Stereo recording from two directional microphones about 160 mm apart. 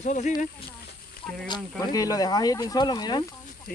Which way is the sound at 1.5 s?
20° left (ahead or behind).